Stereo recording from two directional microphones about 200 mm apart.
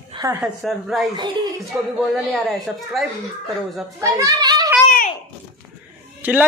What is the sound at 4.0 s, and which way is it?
Speech, 15° right (ahead or behind).